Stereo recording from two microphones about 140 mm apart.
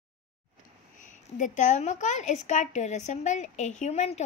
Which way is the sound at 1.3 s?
65° left (ahead or behind).